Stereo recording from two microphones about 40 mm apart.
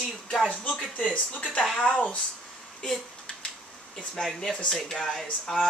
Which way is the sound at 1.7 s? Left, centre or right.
Left.